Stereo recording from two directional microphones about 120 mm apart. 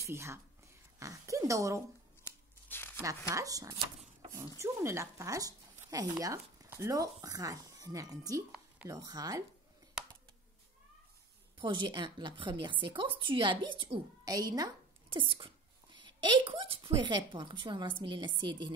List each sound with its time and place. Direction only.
0.0 s speech: 25° right (ahead or behind)
0.9 s a sound: 25° right (ahead or behind)
2.2 s scissors: 20° left (ahead or behind)
3.0 s speech: 25° right (ahead or behind)
11.6 s a woman's voice: 40° right (ahead or behind)
14.2 s a sound: 30° right (ahead or behind)
15.1 s speech: 45° right (ahead or behind)